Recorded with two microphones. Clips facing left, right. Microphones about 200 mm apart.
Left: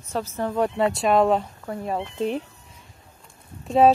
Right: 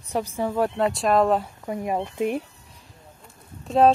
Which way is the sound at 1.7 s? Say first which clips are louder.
Right 2 dB; 15° right (ahead or behind).